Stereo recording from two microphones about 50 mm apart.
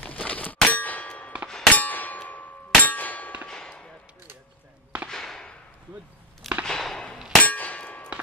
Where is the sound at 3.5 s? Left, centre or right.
Centre.